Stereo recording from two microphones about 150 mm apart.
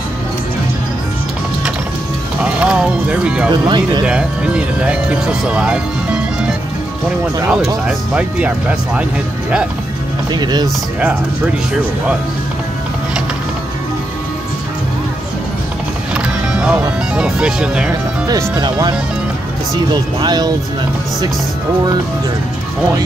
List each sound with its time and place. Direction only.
2.4 s music: 5° right (ahead or behind)
3.4 s speech: 30° right (ahead or behind)
4.0 s speech: 5° right (ahead or behind)
7.8 s speech: 5° right (ahead or behind)
10.3 s speech: 30° right (ahead or behind)
16.5 s speech: 5° right (ahead or behind)
18.6 s speech: 30° right (ahead or behind)